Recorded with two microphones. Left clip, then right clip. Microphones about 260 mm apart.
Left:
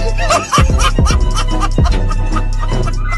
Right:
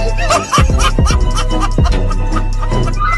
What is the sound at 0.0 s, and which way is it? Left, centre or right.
Music, centre.